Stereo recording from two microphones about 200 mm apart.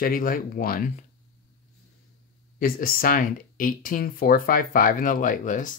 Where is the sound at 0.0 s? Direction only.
45° left (ahead or behind).